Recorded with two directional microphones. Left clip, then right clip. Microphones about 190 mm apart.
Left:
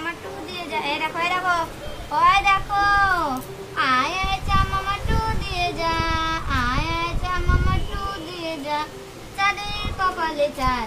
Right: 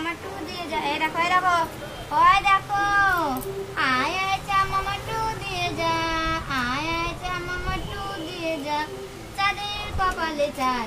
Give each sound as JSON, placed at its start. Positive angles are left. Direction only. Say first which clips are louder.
{"t": 0.8, "sound": "a woman's voice", "louder": "right 1 dB", "side_deg": -5}
{"t": 2.1, "sound": "child singing", "louder": "left 1 dB", "side_deg": -5}